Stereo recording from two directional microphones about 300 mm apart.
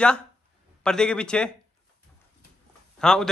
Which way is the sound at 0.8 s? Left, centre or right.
Centre.